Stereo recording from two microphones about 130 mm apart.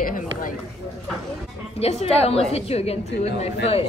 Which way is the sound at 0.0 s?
90° left.